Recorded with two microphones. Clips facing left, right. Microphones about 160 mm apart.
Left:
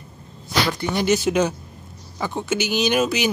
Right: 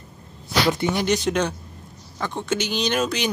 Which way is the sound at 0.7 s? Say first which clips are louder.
Right 3 dB; 20° right (ahead or behind).